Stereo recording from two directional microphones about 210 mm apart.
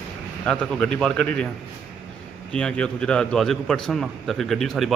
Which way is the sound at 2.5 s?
5° left (ahead or behind).